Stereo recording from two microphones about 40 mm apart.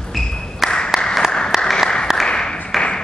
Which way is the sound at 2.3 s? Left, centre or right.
Centre.